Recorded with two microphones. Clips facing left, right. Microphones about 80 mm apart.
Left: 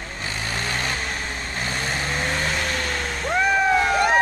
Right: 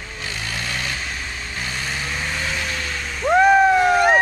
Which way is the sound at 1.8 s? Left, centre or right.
Left.